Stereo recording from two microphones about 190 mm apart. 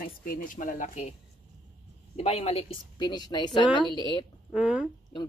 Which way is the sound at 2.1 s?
35° left (ahead or behind).